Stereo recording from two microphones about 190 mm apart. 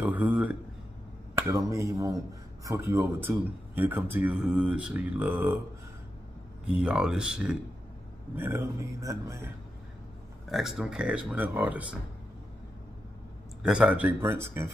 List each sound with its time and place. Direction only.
0.0 s speech: 5° right (ahead or behind)
6.7 s speech: 5° right (ahead or behind)
10.5 s speech: centre (ahead or behind)
13.6 s speech: 5° right (ahead or behind)